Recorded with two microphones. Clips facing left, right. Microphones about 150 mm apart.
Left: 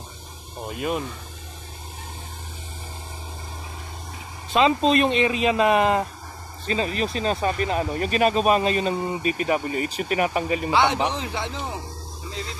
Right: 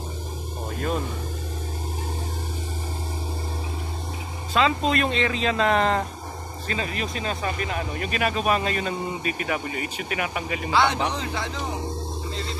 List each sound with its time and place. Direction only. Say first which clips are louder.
0.7 s speech: left 1 dB; 10° left (ahead or behind)
4.6 s speech: left 3 dB; 20° left (ahead or behind)
6.7 s speech: left 5 dB; 30° left (ahead or behind)
10.7 s speech: even; 20° left (ahead or behind)